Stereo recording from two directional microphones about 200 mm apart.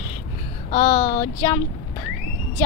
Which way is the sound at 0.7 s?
30° left (ahead or behind).